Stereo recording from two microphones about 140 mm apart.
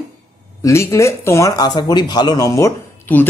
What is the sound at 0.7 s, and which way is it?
Speech, 20° left (ahead or behind).